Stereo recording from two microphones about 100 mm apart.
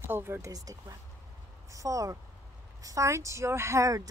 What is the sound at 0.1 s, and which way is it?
Speech, 20° right (ahead or behind).